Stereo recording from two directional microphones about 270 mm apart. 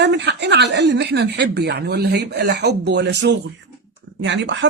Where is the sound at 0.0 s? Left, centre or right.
Right.